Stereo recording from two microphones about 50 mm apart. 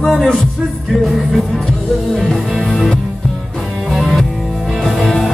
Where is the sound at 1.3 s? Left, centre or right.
Centre.